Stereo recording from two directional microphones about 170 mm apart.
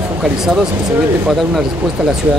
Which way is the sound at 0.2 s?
5° right (ahead or behind).